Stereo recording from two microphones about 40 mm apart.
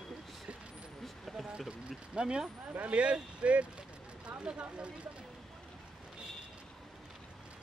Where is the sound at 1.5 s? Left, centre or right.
Centre.